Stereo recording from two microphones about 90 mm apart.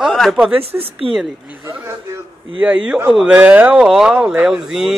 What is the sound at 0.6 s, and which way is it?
Speech, 90° right.